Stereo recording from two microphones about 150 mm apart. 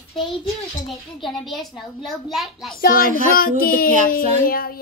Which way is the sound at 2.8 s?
70° left (ahead or behind).